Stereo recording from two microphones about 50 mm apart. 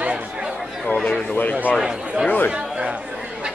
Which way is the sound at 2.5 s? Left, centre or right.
Right.